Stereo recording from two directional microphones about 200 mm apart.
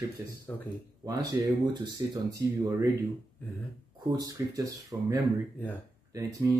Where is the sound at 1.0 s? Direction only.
20° right (ahead or behind).